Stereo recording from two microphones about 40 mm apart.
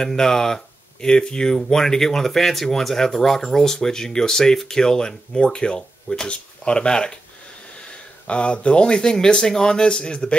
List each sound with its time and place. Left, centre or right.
0.0 s speech: centre